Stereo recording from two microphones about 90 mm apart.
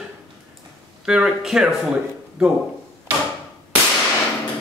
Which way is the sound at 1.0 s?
5° right (ahead or behind).